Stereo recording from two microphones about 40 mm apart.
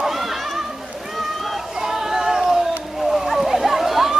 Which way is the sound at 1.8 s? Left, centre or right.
Centre.